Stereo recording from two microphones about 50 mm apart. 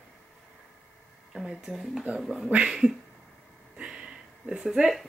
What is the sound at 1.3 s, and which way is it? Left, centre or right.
Speech, centre.